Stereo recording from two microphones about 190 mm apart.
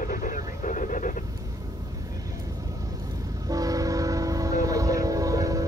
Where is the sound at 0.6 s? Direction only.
45° left (ahead or behind).